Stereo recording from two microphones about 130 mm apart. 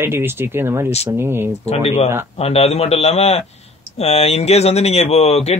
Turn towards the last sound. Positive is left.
turn(degrees=55)  # may be behind; listen again after turning